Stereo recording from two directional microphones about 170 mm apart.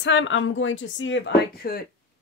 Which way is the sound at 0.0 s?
90° left.